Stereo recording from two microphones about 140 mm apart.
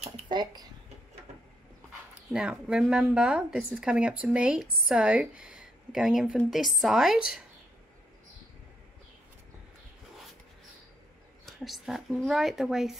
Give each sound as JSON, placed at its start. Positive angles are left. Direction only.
{"t": 0.3, "sound": "speech", "side_deg": -30}
{"t": 2.3, "sound": "speech", "side_deg": -5}
{"t": 11.4, "sound": "speech", "side_deg": 0}